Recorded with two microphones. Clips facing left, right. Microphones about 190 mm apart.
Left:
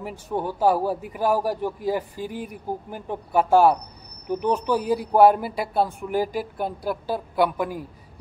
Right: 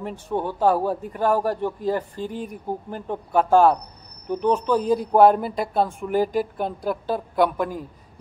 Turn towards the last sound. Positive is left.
turn(degrees=5)  # may be behind; listen again after turning